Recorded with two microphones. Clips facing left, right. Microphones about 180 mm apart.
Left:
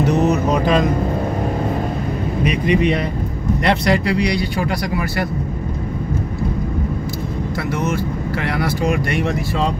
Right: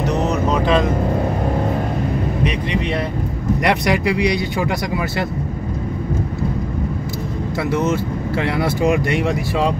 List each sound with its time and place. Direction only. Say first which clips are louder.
2.4 s speech: left 4 dB; 10° left (ahead or behind)
3.6 s speech: left 1 dB; 15° right (ahead or behind)
7.7 s speech: right 3 dB; 20° right (ahead or behind)